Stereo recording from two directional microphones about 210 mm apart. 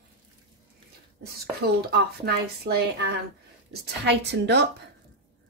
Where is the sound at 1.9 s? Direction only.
50° right (ahead or behind).